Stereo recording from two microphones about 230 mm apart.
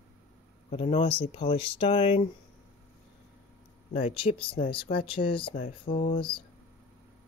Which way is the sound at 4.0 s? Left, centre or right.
Left.